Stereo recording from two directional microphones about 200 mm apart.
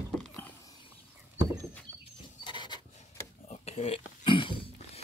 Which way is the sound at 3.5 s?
30° left (ahead or behind).